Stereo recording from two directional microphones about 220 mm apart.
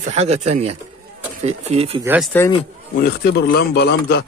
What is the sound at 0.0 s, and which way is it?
Speech, 30° right (ahead or behind).